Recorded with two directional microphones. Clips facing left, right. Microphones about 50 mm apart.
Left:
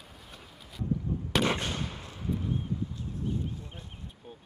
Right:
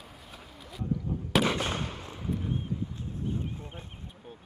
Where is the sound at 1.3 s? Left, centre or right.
Centre.